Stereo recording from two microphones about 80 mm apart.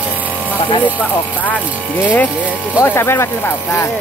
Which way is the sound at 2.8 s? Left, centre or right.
Left.